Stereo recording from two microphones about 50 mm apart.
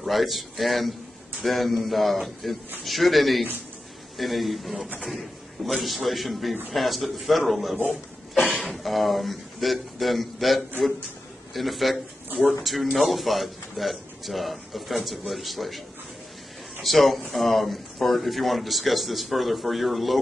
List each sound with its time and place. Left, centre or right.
0.0 s speech: centre
16.8 s speech: centre